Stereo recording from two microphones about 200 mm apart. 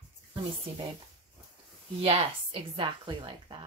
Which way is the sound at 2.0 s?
25° right (ahead or behind).